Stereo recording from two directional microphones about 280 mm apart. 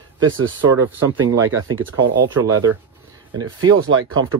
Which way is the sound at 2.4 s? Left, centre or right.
Right.